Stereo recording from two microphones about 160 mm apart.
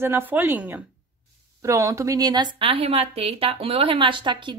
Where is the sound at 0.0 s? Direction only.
10° right (ahead or behind).